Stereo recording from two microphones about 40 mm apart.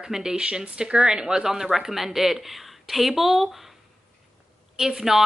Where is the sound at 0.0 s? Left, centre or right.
Centre.